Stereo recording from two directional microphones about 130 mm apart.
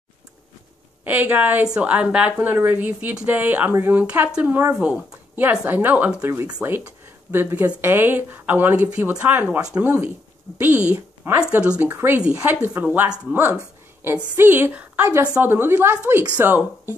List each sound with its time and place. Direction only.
1.0 s a woman's voice: 15° right (ahead or behind)